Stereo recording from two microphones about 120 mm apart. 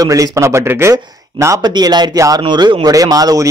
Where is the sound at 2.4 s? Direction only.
40° right (ahead or behind).